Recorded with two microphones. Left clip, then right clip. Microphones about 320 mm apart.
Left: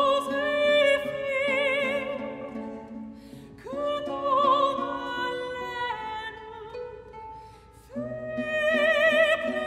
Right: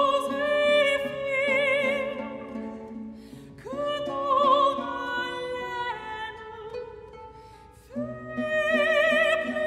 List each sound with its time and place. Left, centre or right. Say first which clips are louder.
0.0 s music: even; centre
3.6 s music: even; centre
7.9 s music: left 2 dB; centre